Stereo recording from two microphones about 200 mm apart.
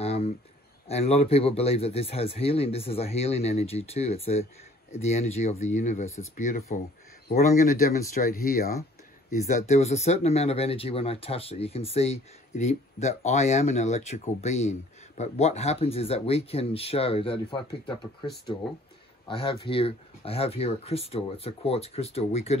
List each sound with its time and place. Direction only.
0.0 s a sound: 30° left (ahead or behind)
0.8 s speech: 30° left (ahead or behind)
18.2 s speech: 55° left (ahead or behind)
19.2 s speech: 25° left (ahead or behind)